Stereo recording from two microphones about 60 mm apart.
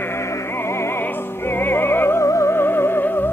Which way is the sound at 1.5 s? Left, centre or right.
Left.